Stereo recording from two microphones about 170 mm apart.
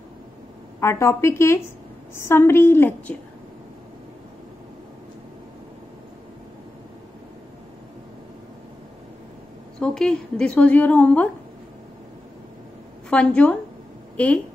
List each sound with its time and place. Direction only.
0.7 s a woman's voice: 15° left (ahead or behind)
9.8 s a woman's voice: 5° left (ahead or behind)
13.1 s a woman's voice: 5° left (ahead or behind)